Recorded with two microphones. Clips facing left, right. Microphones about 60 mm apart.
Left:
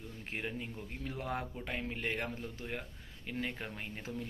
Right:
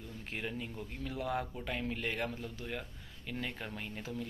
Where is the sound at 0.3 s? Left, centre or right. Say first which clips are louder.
Even; left.